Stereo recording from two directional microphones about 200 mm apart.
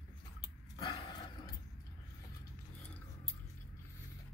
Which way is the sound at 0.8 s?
25° left (ahead or behind).